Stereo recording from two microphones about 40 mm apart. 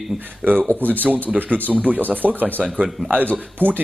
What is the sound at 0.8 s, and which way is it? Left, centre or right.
Speech, right.